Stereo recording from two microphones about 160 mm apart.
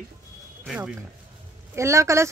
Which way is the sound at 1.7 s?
20° right (ahead or behind).